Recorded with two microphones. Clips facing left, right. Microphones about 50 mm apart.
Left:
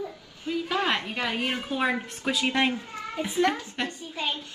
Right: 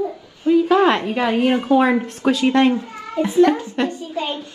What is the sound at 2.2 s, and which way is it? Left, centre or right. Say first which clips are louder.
Speech: right 10 dB; centre.